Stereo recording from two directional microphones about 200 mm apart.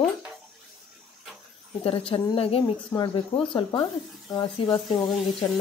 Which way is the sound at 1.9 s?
30° left (ahead or behind).